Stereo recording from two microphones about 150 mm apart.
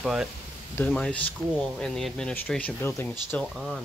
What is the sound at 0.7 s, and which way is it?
Speech, 10° left (ahead or behind).